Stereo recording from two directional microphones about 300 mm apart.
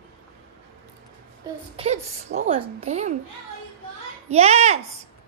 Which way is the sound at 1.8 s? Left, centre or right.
Right.